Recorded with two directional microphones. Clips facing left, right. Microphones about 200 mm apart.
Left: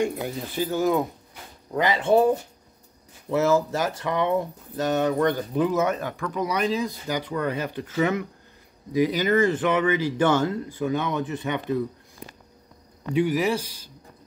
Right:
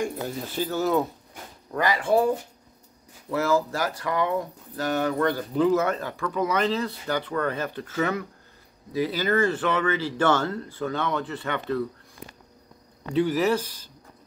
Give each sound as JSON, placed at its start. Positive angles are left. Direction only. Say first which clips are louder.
{"t": 0.0, "sound": "speech", "louder": "left 3 dB", "side_deg": 10}
{"t": 1.7, "sound": "speech", "louder": "left 2 dB", "side_deg": 20}
{"t": 13.1, "sound": "speech", "louder": "even", "side_deg": 10}